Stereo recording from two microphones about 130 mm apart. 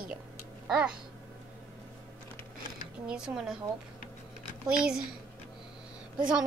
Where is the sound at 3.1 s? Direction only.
5° right (ahead or behind).